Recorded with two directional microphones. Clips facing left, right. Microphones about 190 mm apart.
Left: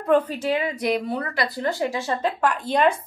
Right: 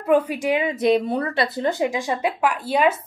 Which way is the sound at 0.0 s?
10° right (ahead or behind).